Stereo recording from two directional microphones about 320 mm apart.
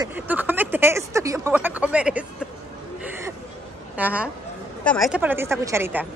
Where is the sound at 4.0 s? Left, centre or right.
Centre.